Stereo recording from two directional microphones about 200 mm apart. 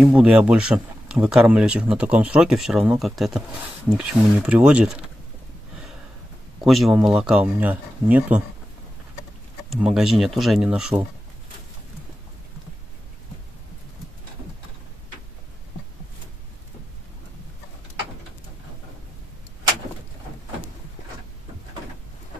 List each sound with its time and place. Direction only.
0.0 s speech: 5° right (ahead or behind)
6.6 s speech: centre (ahead or behind)
9.7 s speech: centre (ahead or behind)